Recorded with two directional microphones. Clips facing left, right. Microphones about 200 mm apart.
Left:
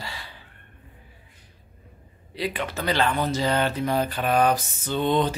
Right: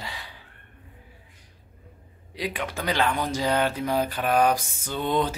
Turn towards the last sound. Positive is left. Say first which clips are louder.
# left 3 dB
turn(degrees=-10)  # may be behind; listen again after turning